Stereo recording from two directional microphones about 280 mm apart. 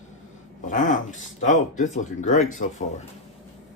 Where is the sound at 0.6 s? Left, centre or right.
Left.